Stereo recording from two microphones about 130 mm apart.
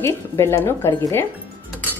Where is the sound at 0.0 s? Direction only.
20° left (ahead or behind).